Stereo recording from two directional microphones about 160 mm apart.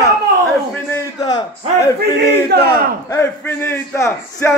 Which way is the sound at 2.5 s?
85° right.